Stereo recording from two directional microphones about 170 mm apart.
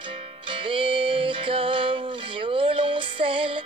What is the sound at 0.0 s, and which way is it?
Music, 30° right (ahead or behind).